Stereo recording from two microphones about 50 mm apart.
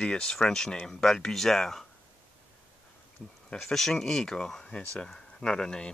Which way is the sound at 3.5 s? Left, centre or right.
Centre.